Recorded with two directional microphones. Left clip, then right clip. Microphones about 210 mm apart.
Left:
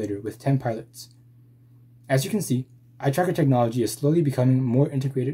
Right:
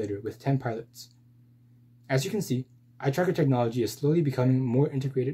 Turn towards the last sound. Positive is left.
turn(degrees=10)  # may be behind; listen again after turning